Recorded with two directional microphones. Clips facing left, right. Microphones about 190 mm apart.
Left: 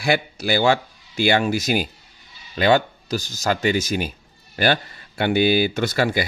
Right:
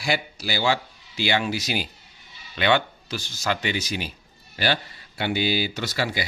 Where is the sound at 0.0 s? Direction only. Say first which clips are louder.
Left 5 dB; 55° left (ahead or behind).